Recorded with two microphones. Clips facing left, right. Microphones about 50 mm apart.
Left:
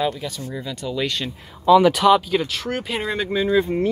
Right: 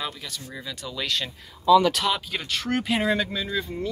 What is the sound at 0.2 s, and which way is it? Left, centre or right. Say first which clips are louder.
Speech: left 7 dB; centre.